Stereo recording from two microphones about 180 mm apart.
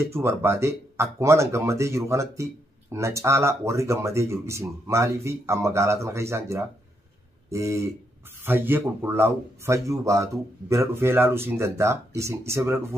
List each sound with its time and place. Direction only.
0.1 s speech: 15° right (ahead or behind)